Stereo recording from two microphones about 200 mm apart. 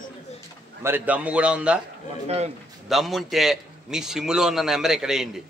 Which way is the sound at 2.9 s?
Centre (ahead or behind).